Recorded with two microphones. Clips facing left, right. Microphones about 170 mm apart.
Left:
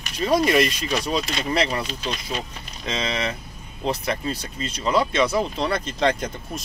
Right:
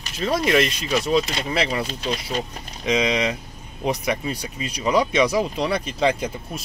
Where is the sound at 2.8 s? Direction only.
15° right (ahead or behind).